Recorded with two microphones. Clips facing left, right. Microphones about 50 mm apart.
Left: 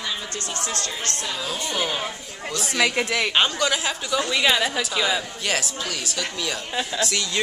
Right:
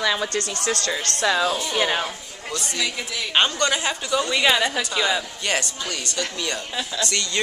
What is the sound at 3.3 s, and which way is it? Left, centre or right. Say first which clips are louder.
A man's voice: right 4 dB; centre.